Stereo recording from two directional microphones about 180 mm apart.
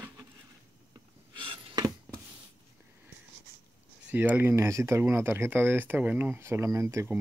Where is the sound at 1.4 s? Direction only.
30° right (ahead or behind).